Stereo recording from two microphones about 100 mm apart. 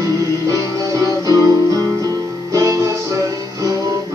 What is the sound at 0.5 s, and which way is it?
Music, 35° right (ahead or behind).